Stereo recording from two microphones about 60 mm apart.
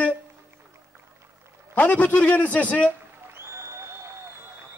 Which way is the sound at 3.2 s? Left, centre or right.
Right.